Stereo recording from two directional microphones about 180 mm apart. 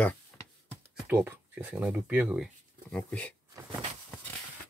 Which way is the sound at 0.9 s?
10° right (ahead or behind).